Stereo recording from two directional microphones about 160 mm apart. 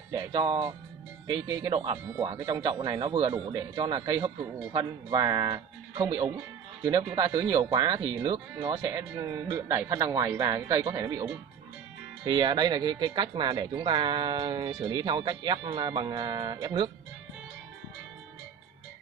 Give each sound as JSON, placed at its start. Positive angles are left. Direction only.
{"t": 0.1, "sound": "speech", "side_deg": -25}
{"t": 12.3, "sound": "speech", "side_deg": -30}